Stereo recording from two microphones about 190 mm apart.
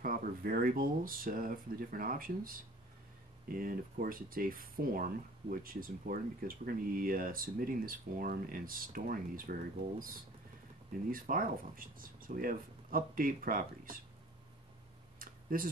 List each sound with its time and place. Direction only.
0.0 s speech: 50° right (ahead or behind)
11.1 s speech: 45° right (ahead or behind)
15.1 s tick-tock: 50° right (ahead or behind)